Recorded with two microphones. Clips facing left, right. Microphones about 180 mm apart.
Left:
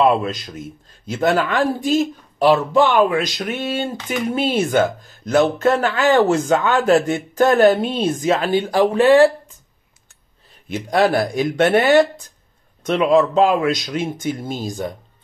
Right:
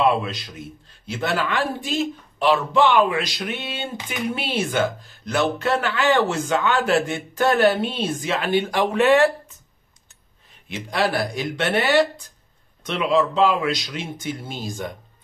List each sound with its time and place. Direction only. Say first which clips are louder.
0.2 s speech: left 5 dB; 45° left (ahead or behind)
10.7 s speech: left 6 dB; 45° left (ahead or behind)